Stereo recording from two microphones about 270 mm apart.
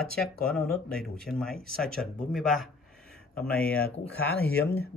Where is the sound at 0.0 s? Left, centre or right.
Centre.